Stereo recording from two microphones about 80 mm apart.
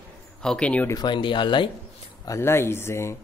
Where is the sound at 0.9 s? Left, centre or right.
Left.